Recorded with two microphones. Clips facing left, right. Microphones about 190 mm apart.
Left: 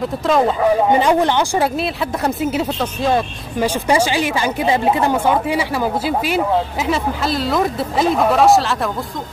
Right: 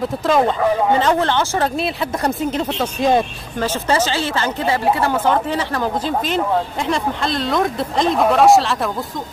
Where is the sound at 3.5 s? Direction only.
15° left (ahead or behind).